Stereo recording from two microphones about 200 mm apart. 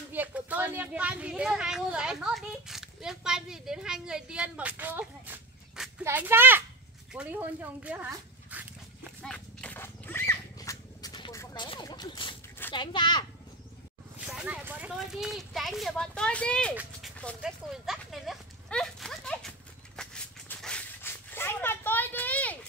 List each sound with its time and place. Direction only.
0.1 s speech: 10° right (ahead or behind)
9.2 s a sound: 5° left (ahead or behind); by 12.4 s 25° left (ahead or behind)
12.7 s speech: 25° left (ahead or behind)
14.2 s speech: 5° right (ahead or behind)
17.2 s horse: centre (ahead or behind)
20.0 s a sound: 5° left (ahead or behind)